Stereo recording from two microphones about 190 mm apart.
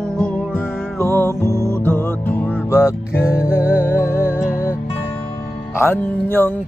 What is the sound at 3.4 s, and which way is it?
Music, 10° right (ahead or behind).